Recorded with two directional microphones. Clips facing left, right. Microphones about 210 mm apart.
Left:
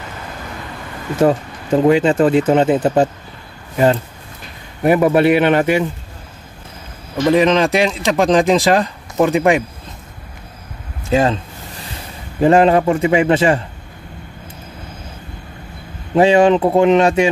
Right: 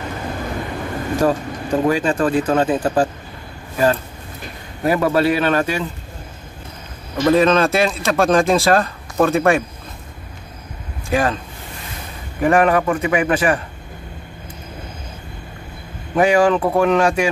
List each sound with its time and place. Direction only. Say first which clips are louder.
1.2 s speech: left 5 dB; 25° left (ahead or behind)
7.2 s speech: left 1 dB; 15° left (ahead or behind)
11.1 s speech: left 4 dB; 25° left (ahead or behind)
12.4 s speech: left 4 dB; 25° left (ahead or behind)
16.2 s speech: left 3 dB; 25° left (ahead or behind)